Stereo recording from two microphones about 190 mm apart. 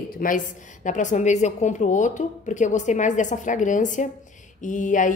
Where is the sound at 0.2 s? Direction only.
45° left (ahead or behind).